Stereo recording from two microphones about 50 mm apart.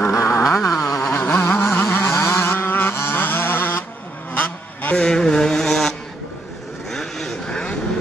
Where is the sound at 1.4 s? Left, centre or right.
Left.